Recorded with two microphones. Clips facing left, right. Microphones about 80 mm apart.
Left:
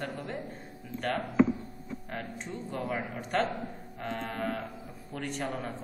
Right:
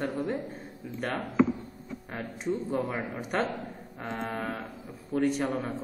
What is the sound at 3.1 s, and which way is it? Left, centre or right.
A man's voice, centre.